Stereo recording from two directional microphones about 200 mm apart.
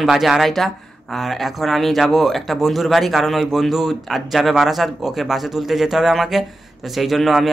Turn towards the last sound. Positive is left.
turn(degrees=0)  # may be behind; listen again after turning